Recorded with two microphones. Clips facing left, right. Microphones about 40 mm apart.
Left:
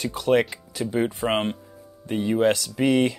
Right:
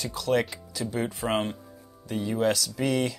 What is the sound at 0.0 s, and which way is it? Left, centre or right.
Speech, left.